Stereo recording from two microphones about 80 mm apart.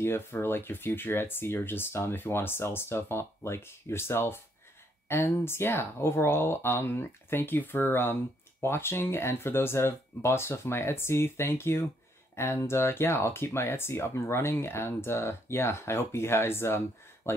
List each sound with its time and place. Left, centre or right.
0.0 s speech: left